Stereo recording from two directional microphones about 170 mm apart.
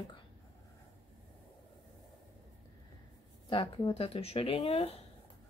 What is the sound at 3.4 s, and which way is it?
Speech, 30° left (ahead or behind).